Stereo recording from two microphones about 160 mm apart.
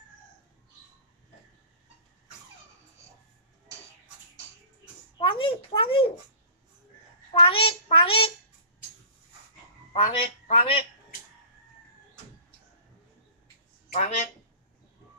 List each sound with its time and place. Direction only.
5.1 s a sound: 30° left (ahead or behind)
7.3 s child singing: 35° left (ahead or behind)
9.9 s a woman's voice: 35° left (ahead or behind)
13.9 s speech: 45° left (ahead or behind)